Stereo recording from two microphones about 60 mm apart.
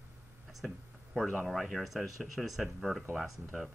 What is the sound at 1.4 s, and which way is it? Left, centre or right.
Speech, centre.